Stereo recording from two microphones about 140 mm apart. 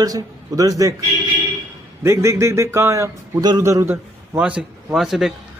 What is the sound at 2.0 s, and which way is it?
A man's voice, 20° right (ahead or behind).